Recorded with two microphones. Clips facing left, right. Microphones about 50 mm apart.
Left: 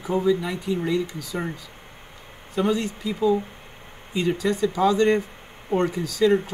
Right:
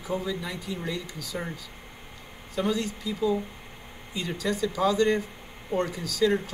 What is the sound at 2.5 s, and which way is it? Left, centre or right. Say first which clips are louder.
Speech: left 4 dB; left.